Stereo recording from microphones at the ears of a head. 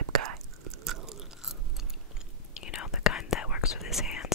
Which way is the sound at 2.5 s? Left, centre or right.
Left.